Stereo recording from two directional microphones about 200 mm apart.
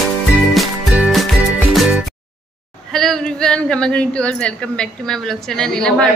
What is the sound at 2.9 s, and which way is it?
A man's voice, 5° left (ahead or behind).